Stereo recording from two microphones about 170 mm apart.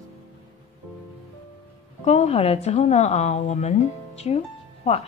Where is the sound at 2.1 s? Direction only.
40° left (ahead or behind).